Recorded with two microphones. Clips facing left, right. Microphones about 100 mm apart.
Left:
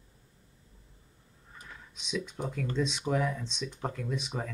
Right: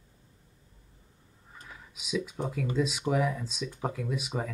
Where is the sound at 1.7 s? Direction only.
5° right (ahead or behind).